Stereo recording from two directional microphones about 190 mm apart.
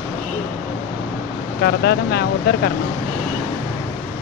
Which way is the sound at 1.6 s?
60° left (ahead or behind).